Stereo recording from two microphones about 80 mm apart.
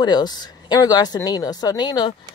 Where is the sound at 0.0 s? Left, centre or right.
Left.